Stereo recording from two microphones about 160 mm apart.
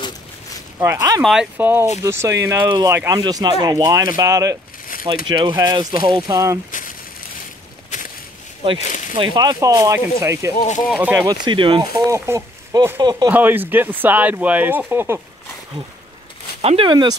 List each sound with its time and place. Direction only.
0.7 s speech: 20° right (ahead or behind)
1.2 s speech: 5° right (ahead or behind); by 6.6 s 20° right (ahead or behind)
7.9 s a sound: 50° left (ahead or behind)
9.1 s speech: 30° right (ahead or behind)
10.6 s speech: 50° left (ahead or behind)
11.0 s speech: 10° right (ahead or behind)
11.4 s speech: 30° right (ahead or behind)
13.3 s speech: 10° right (ahead or behind)
16.6 s speech: 35° right (ahead or behind)